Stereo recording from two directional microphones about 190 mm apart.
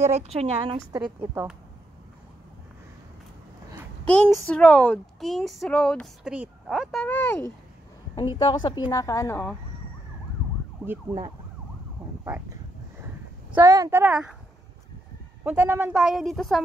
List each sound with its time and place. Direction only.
0.0 s a woman's voice: 35° right (ahead or behind)
4.0 s a child's voice: 5° left (ahead or behind)
8.4 s speech: 25° left (ahead or behind); by 9.6 s 10° left (ahead or behind)
10.8 s a child's voice: centre (ahead or behind)
12.3 s a woman's voice: 15° right (ahead or behind)
13.6 s a woman's voice: 15° right (ahead or behind)
15.4 s a child's voice: 10° right (ahead or behind)